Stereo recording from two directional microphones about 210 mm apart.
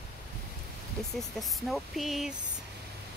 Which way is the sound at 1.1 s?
Centre (ahead or behind).